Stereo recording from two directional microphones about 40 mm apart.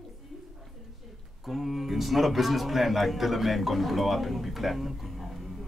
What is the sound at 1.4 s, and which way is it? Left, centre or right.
A man's voice, centre.